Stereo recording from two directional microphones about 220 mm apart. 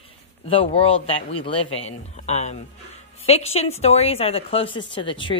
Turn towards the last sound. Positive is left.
turn(degrees=20)  # may be behind; listen again after turning